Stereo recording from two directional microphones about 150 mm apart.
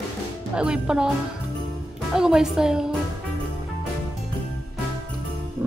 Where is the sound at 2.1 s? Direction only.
5° right (ahead or behind).